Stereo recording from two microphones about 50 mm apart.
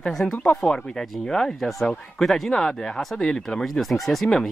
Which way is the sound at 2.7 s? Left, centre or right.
Centre.